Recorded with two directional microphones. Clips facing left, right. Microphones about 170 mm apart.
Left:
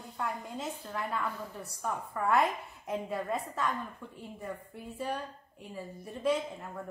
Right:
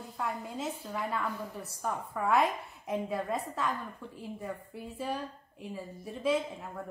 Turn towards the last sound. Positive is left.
turn(degrees=0)  # may be behind; listen again after turning